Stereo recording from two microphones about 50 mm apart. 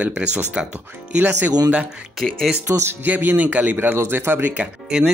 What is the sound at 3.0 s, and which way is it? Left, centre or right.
Speech, right.